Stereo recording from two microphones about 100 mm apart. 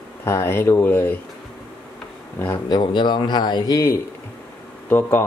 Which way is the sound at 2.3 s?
20° left (ahead or behind).